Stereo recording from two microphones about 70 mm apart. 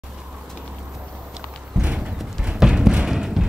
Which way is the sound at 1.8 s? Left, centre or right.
Centre.